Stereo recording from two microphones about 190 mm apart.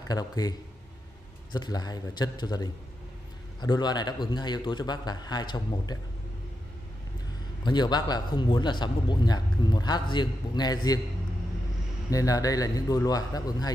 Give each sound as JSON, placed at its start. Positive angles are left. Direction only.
{"t": 0.1, "sound": "a man's voice", "side_deg": 20}
{"t": 7.6, "sound": "a man's voice", "side_deg": 20}
{"t": 12.1, "sound": "a man's voice", "side_deg": 20}